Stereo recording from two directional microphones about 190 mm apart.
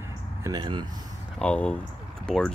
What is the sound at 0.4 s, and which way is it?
Speech, 20° right (ahead or behind).